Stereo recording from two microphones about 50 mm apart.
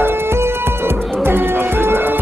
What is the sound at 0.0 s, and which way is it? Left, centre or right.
Music, right.